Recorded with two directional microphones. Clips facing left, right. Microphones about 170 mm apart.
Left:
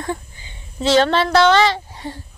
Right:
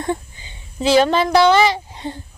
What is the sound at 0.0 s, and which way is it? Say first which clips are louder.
Speech: right 3 dB; 20° right (ahead or behind).